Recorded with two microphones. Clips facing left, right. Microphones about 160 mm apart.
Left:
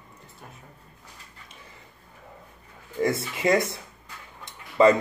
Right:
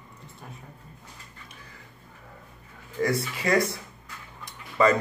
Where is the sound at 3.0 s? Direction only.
25° left (ahead or behind).